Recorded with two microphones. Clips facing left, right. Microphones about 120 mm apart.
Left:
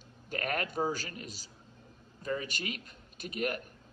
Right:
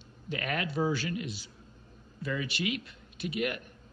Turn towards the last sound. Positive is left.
turn(degrees=40)  # may be behind; listen again after turning